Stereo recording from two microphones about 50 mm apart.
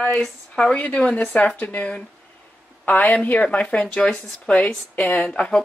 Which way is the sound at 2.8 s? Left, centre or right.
Left.